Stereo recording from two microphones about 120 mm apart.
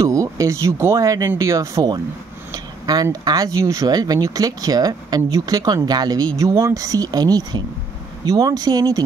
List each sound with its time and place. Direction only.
0.0 s speech: 25° right (ahead or behind)